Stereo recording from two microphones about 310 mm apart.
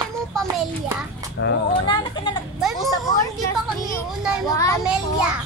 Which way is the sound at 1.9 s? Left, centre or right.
Centre.